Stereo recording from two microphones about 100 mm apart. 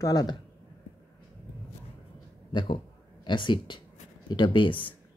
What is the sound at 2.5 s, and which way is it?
Speech, 50° left (ahead or behind).